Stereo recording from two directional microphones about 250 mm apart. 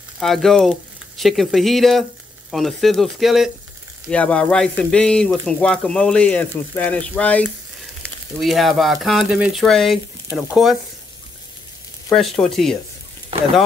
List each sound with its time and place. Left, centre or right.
0.2 s speech: centre
12.1 s speech: centre
13.3 s a sound: right